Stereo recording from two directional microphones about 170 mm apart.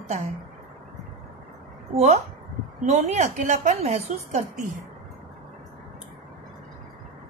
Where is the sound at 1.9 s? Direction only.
40° right (ahead or behind).